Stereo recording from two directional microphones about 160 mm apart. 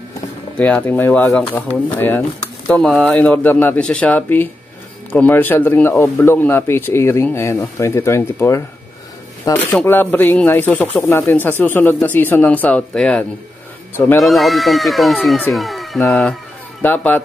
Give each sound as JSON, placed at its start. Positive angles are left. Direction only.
{"t": 0.6, "sound": "speech", "side_deg": 10}
{"t": 14.2, "sound": "speech", "side_deg": 0}